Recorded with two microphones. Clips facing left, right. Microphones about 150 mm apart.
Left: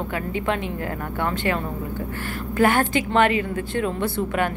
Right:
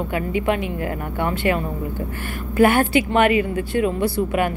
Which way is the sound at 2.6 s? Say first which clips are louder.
Right 4 dB; 15° right (ahead or behind).